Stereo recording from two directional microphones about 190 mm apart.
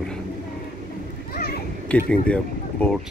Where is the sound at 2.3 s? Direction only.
5° left (ahead or behind).